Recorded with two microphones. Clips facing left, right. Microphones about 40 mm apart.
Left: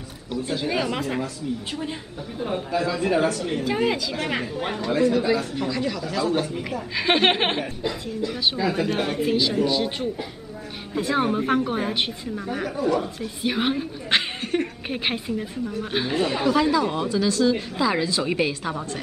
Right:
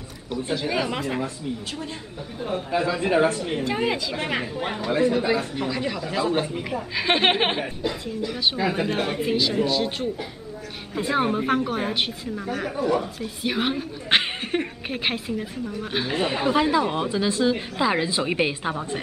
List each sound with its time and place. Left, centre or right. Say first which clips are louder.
0.6 s a woman's voice: left 2 dB; centre
2.7 s a woman's voice: right 1 dB; right
3.6 s a woman's voice: left 2 dB; centre
4.9 s a woman's voice: left 1 dB; right
6.5 s a woman's voice: even; centre
8.5 s speech: left 1 dB; centre
9.0 s a woman's voice: left 1 dB; centre
11.0 s a woman's voice: even; centre
14.1 s chuckle: right 1 dB; centre
14.9 s a woman's voice: even; centre
16.4 s a woman's voice: even; right